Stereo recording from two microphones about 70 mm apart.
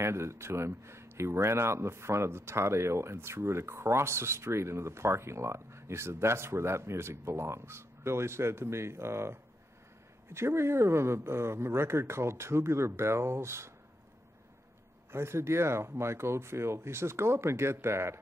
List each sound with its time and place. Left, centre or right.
0.0 s speech: right
15.0 s speech: right